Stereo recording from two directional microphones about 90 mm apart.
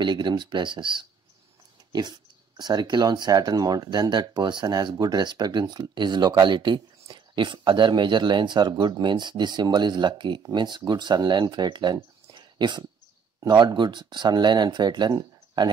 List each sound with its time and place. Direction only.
0.0 s speech: 55° right (ahead or behind)
1.9 s speech: 50° right (ahead or behind)